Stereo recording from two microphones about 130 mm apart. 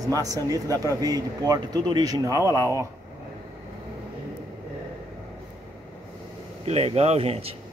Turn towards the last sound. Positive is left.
turn(degrees=-50)  # may be behind; listen again after turning